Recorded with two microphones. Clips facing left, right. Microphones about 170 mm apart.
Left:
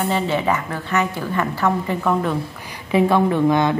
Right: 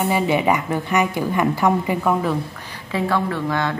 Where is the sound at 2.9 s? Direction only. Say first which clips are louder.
Left 5 dB; 20° left (ahead or behind).